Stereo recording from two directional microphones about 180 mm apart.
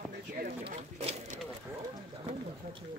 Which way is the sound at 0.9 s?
35° right (ahead or behind).